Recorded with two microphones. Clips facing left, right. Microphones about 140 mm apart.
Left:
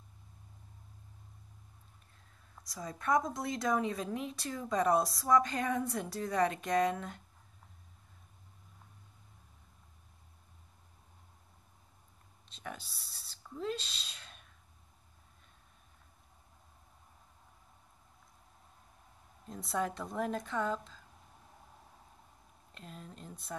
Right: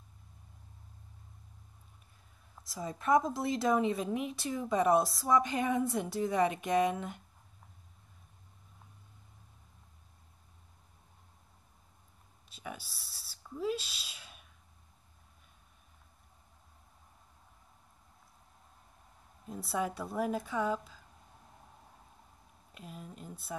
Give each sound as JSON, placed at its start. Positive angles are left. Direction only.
{"t": 2.5, "sound": "a woman's voice", "side_deg": -5}
{"t": 12.4, "sound": "a sound", "side_deg": -5}
{"t": 19.4, "sound": "a woman's voice", "side_deg": -5}
{"t": 22.7, "sound": "speech", "side_deg": -5}